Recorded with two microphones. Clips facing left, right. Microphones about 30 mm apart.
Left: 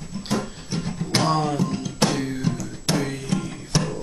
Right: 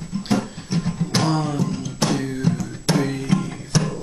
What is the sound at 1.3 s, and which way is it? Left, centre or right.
Music, left.